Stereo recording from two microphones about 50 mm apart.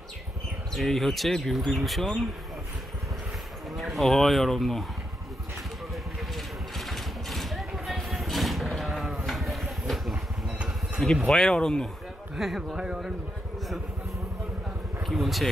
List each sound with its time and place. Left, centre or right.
0.7 s speech: centre
3.7 s speech: centre
6.3 s vehicle: centre
11.2 s speech: centre
12.4 s speech: centre
15.0 s a sound: centre